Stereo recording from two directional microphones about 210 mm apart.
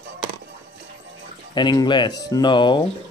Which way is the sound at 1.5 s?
20° left (ahead or behind).